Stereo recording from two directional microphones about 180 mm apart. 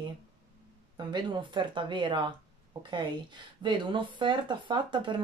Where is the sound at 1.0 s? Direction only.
25° right (ahead or behind).